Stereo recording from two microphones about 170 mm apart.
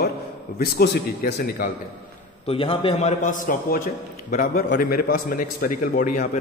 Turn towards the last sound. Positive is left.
turn(degrees=45)  # may be behind; listen again after turning